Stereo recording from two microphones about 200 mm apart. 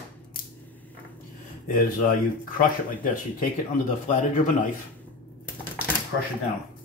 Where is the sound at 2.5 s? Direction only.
40° left (ahead or behind).